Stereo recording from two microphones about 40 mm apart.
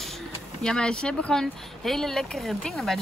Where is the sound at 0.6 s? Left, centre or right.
Centre.